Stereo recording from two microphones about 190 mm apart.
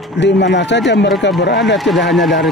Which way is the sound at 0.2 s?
65° left (ahead or behind).